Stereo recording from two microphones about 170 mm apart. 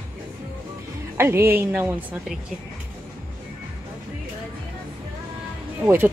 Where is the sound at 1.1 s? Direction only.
15° right (ahead or behind).